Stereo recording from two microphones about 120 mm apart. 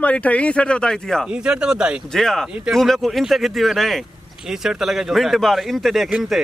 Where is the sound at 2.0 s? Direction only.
5° left (ahead or behind).